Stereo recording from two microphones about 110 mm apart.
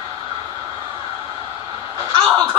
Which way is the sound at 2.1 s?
40° right (ahead or behind).